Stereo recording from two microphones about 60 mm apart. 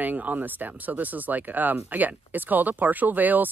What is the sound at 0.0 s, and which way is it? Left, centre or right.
Speech, right.